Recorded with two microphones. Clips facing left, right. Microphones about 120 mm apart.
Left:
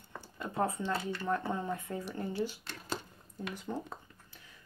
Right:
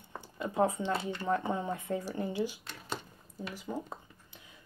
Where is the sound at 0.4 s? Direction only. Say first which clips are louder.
Right 4 dB; 15° right (ahead or behind).